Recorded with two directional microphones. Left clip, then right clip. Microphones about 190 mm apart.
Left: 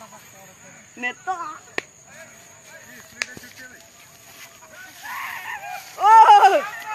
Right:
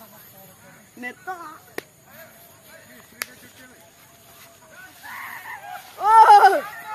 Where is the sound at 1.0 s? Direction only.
30° left (ahead or behind).